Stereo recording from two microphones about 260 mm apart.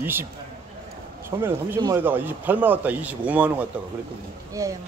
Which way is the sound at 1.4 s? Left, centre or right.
Centre.